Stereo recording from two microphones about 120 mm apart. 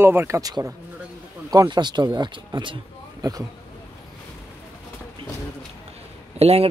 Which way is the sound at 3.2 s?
30° right (ahead or behind).